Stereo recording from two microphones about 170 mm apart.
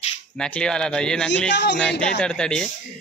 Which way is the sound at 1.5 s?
90° left.